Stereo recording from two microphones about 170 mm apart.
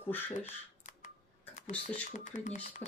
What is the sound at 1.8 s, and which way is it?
Speech, 40° left (ahead or behind).